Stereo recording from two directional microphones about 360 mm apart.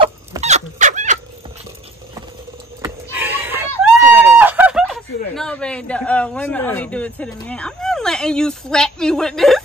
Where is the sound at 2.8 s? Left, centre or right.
Centre.